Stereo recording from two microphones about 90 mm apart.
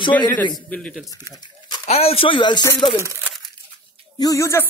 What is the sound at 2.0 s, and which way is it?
Speech, 80° left.